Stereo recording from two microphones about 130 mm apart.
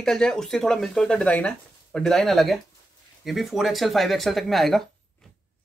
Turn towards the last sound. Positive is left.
turn(degrees=0)  # may be behind; listen again after turning